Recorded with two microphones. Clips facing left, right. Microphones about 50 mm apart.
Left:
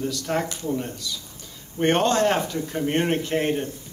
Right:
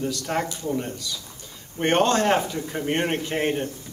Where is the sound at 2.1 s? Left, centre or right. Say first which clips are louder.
Even; centre.